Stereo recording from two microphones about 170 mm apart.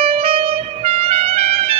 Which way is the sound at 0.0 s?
35° right (ahead or behind).